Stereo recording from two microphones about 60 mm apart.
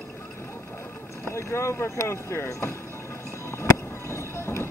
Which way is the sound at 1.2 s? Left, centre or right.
Left.